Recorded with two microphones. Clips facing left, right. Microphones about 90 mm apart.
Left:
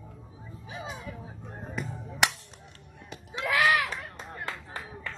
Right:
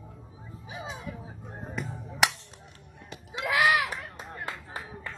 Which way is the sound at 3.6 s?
5° right (ahead or behind).